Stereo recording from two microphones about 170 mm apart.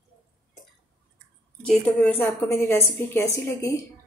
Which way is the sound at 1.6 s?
10° left (ahead or behind).